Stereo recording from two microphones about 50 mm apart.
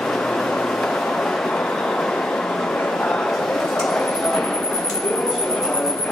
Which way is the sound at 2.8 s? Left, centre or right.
Centre.